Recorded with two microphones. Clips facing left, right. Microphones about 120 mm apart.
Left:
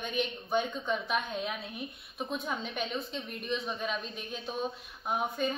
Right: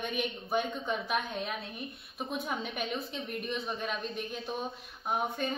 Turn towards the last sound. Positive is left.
turn(degrees=0)  # may be behind; listen again after turning